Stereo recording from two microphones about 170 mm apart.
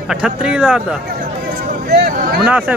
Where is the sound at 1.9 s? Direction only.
60° right (ahead or behind).